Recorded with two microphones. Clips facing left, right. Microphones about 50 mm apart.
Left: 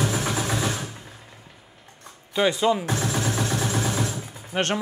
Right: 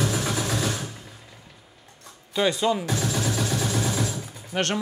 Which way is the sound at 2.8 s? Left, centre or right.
Left.